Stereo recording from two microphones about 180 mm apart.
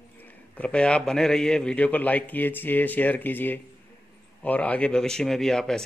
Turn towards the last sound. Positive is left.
turn(degrees=5)  # may be behind; listen again after turning